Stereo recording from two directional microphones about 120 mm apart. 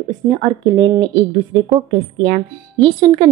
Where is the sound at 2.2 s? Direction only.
45° right (ahead or behind).